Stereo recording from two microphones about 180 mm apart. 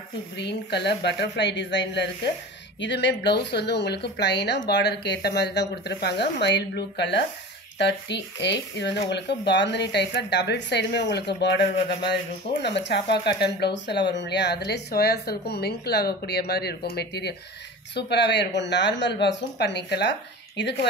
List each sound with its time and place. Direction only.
0.4 s speech: 70° left (ahead or behind)